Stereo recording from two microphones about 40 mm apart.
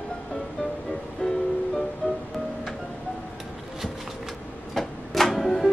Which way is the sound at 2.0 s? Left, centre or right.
Left.